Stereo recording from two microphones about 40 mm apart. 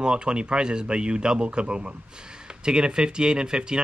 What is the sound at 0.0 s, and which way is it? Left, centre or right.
Speech, right.